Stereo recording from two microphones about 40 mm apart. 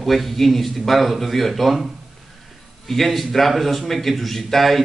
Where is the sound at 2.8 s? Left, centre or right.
Centre.